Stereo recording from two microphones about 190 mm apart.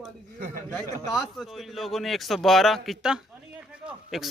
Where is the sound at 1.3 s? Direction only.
Centre (ahead or behind).